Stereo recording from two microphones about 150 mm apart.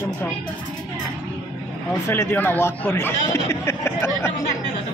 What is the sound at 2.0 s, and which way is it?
Speech, 15° left (ahead or behind).